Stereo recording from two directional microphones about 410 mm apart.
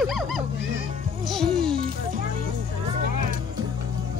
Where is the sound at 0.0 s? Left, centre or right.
Centre.